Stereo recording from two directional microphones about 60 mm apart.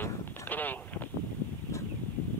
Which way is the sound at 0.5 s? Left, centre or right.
Left.